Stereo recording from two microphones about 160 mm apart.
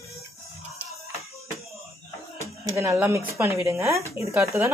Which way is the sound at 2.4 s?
20° right (ahead or behind).